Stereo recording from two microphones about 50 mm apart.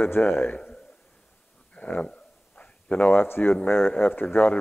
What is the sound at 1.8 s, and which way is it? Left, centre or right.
Speech, left.